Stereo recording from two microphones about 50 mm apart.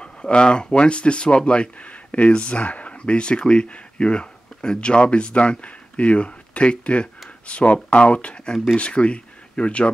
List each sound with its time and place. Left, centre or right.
0.0 s speech: centre